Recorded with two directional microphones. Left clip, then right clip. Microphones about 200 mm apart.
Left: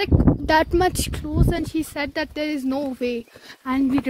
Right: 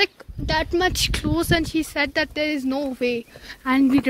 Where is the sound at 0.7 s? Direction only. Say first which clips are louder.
Even; 20° left (ahead or behind).